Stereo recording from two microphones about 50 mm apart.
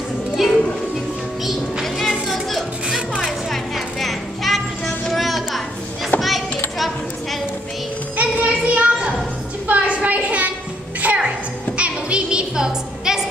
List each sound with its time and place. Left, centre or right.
0.4 s music: centre
3.7 s music: centre
8.2 s children playing: right
9.7 s a sound: right
11.0 s music: right